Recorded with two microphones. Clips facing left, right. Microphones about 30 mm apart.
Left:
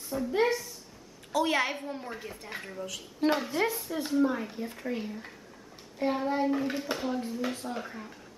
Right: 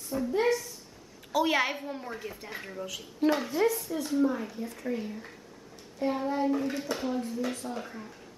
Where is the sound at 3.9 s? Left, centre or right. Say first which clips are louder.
Even; left.